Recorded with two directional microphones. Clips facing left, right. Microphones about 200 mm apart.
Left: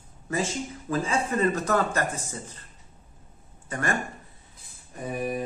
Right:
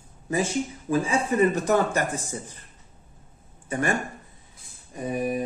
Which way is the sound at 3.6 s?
15° right (ahead or behind).